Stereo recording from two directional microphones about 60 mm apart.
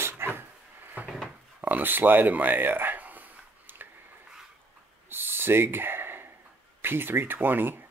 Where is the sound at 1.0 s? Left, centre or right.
Right.